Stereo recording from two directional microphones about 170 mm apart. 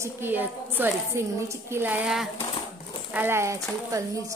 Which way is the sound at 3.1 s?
15° right (ahead or behind).